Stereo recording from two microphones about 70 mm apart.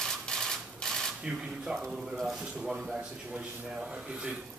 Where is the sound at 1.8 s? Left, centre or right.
Centre.